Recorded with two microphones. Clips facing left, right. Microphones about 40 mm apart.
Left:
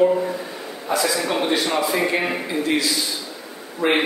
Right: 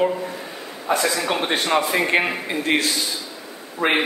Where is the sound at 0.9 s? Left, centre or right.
Right.